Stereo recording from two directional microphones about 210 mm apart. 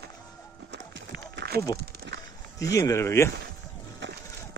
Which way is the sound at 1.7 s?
55° right (ahead or behind).